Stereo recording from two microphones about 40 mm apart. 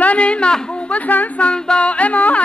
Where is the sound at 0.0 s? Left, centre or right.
Left.